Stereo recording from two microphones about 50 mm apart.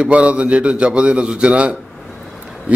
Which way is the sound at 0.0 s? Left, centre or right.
Right.